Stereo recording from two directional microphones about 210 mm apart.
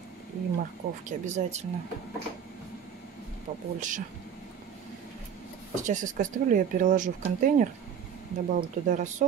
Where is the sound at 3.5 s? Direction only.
35° right (ahead or behind).